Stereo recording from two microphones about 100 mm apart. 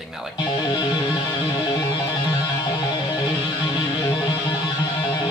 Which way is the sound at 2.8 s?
45° left (ahead or behind).